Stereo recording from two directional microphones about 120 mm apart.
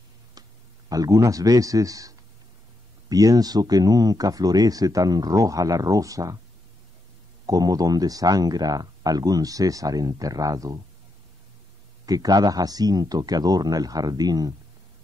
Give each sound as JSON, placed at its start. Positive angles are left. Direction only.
{"t": 0.3, "sound": "speech", "side_deg": -30}
{"t": 7.4, "sound": "speech", "side_deg": -30}
{"t": 12.1, "sound": "speech", "side_deg": -30}